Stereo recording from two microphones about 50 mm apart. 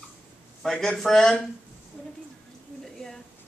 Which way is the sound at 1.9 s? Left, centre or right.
Left.